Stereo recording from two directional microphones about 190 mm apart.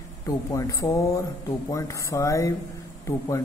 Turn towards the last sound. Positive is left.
turn(degrees=15)  # may be behind; listen again after turning